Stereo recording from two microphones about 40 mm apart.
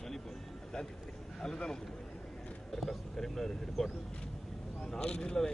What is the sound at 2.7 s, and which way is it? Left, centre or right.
Speech, centre.